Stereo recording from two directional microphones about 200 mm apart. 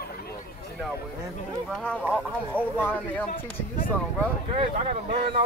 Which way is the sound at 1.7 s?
5° left (ahead or behind).